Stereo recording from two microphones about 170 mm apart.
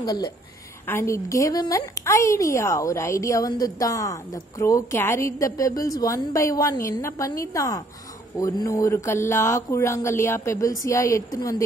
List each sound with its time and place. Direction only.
0.0 s a woman's voice: 25° left (ahead or behind)